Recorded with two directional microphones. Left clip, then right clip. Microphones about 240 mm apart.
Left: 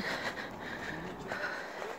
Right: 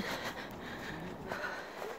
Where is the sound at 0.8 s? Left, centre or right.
Centre.